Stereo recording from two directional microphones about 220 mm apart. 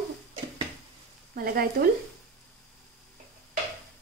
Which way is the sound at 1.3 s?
40° right (ahead or behind).